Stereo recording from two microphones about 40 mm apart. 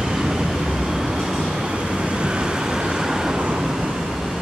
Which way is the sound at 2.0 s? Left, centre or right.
Centre.